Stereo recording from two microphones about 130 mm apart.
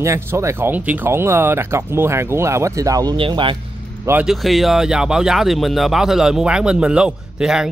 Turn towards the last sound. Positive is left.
turn(degrees=-5)  # may be behind; listen again after turning